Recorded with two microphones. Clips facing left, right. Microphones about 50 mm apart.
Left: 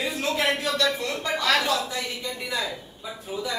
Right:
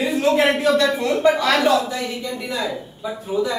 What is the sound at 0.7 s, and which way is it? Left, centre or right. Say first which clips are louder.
Speech: right 8 dB; right.